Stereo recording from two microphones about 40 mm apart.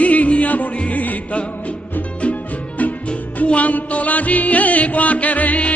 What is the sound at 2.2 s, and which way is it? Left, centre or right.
Music, left.